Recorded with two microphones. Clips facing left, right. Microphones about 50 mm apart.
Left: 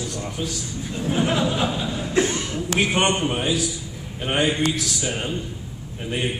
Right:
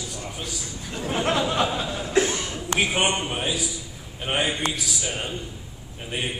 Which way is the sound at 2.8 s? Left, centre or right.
Centre.